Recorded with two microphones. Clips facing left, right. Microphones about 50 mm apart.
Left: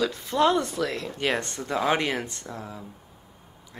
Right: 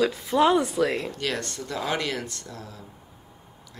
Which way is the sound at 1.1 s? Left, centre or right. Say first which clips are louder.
Left 3 dB; left.